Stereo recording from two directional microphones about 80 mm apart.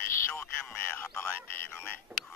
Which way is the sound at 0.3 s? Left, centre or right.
Left.